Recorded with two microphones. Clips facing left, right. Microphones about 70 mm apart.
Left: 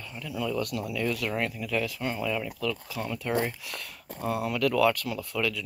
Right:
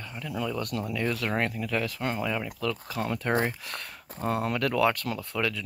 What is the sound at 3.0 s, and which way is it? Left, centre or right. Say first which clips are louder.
Speech: right 2 dB; right.